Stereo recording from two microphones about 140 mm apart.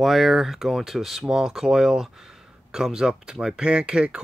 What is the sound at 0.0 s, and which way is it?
Speech, centre (ahead or behind).